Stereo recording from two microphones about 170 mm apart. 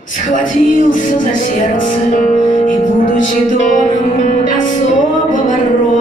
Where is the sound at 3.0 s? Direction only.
50° left (ahead or behind).